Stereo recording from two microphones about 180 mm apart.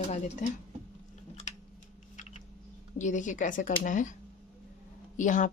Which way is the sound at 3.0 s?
45° left (ahead or behind).